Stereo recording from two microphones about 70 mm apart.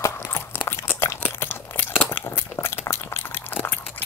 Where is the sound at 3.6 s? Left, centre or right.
Left.